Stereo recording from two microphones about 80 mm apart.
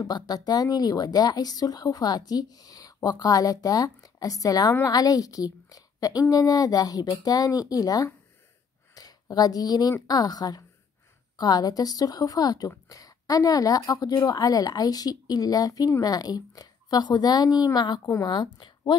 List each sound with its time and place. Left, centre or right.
0.0 s speech: left